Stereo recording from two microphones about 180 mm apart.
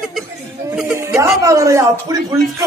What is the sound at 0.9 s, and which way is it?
Speech, 15° right (ahead or behind).